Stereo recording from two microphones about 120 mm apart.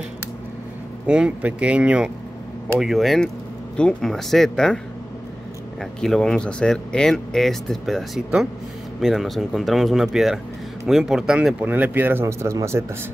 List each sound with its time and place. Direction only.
1.0 s speech: 10° right (ahead or behind)
5.8 s speech: 5° left (ahead or behind)
11.6 s speech: 15° right (ahead or behind)